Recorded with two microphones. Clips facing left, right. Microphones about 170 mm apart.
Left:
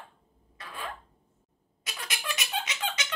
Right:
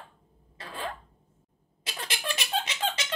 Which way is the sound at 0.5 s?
30° right (ahead or behind).